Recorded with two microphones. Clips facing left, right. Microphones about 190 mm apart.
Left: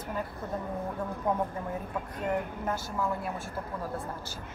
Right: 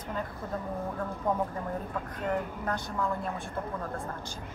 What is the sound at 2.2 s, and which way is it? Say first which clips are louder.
A woman's voice: even; 5° left (ahead or behind).